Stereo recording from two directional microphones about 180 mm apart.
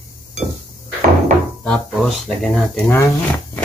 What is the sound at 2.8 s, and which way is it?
Speech, 10° left (ahead or behind).